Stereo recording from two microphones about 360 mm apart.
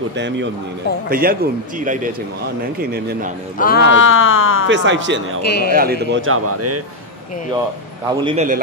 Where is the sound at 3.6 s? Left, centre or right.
Left.